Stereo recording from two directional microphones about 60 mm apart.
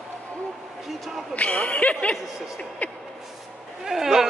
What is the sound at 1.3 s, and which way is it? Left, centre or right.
Speech, left.